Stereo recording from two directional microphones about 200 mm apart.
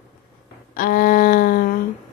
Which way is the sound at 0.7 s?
45° left (ahead or behind).